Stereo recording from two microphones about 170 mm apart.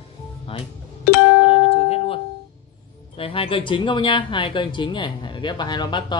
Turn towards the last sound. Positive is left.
turn(degrees=25)  # may be behind; listen again after turning